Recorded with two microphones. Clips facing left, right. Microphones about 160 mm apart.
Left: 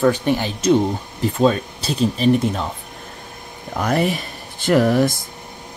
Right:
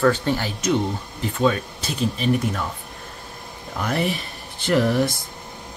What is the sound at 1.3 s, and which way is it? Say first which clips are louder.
Speech: left 3 dB; 35° left (ahead or behind).